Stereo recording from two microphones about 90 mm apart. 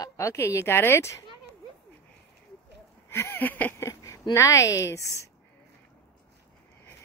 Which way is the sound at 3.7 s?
40° left (ahead or behind).